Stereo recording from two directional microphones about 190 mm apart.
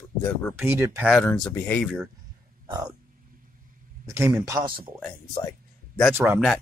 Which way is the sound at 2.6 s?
20° right (ahead or behind).